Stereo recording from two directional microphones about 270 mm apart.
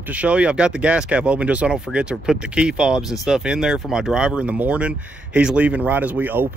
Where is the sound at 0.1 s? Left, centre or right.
Centre.